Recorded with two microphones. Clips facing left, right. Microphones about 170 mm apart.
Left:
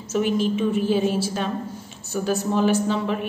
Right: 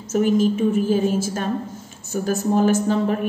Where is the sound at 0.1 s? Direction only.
45° right (ahead or behind).